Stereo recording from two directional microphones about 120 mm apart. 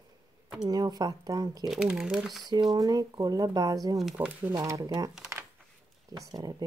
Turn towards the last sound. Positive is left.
turn(degrees=-30)  # may be behind; listen again after turning